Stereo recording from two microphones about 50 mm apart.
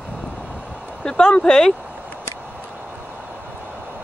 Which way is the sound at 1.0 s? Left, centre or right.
Centre.